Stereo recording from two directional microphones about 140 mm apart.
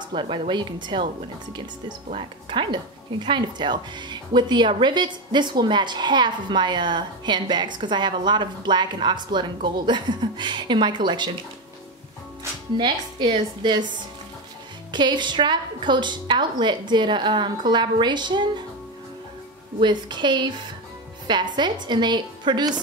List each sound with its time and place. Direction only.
0.1 s speech: 35° right (ahead or behind)
2.1 s speech: 35° right (ahead or behind)
12.7 s speech: 35° right (ahead or behind)
14.9 s speech: 35° right (ahead or behind)
19.8 s speech: 30° right (ahead or behind)